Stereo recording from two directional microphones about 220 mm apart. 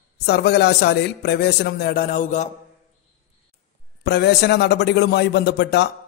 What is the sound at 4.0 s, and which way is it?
Speech, 50° left (ahead or behind).